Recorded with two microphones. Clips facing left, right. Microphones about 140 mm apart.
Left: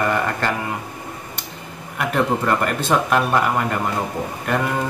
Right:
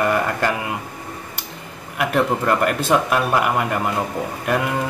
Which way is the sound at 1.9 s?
5° right (ahead or behind).